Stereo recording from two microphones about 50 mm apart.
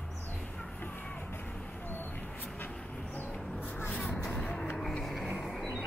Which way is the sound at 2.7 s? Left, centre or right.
Centre.